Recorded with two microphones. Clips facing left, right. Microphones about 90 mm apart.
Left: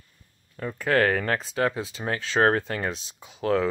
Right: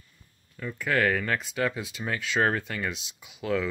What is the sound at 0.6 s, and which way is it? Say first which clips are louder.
Speech: left 4 dB; 40° left (ahead or behind).